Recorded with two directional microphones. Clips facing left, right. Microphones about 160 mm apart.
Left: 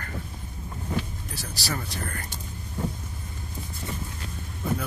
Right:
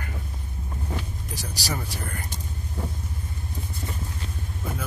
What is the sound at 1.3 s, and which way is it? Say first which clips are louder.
Speech: right 1 dB; 15° right (ahead or behind).